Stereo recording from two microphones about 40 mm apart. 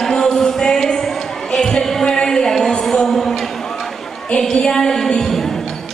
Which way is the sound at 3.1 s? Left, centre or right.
Centre.